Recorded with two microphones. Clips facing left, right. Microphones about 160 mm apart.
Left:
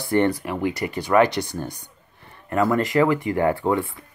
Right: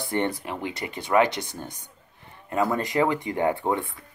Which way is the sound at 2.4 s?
15° right (ahead or behind).